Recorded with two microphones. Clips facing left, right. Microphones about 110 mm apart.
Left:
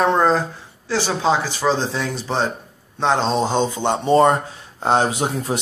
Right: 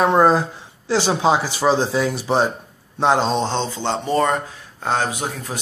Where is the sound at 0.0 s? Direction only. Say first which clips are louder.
Right 2 dB; 10° right (ahead or behind).